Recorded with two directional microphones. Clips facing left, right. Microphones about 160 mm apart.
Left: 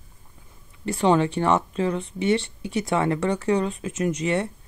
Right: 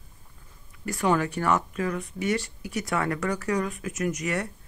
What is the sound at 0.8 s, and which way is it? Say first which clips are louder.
Speech: left 5 dB; 25° left (ahead or behind).